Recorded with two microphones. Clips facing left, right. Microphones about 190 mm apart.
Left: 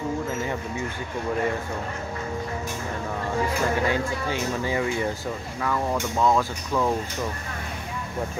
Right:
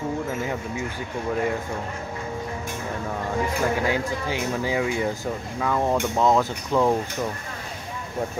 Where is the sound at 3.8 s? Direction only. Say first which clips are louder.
Even; 10° right (ahead or behind).